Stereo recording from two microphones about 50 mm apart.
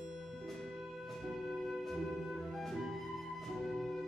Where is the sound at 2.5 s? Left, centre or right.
Centre.